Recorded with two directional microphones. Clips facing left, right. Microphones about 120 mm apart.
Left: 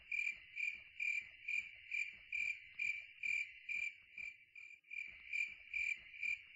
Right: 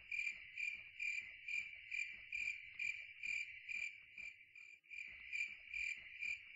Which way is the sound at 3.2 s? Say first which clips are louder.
Left 5 dB; 25° right (ahead or behind).